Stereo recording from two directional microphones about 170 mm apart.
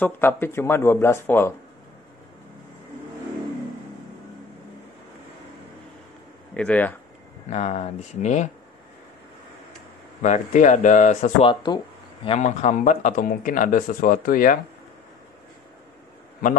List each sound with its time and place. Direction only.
0.0 s speech: 10° left (ahead or behind)
6.5 s speech: 10° left (ahead or behind)
7.4 s speech: 40° left (ahead or behind)
10.2 s speech: 45° left (ahead or behind)
11.4 s speech: 25° left (ahead or behind)
12.3 s speech: 40° left (ahead or behind)